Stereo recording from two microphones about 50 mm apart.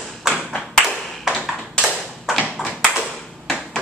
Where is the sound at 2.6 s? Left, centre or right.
Left.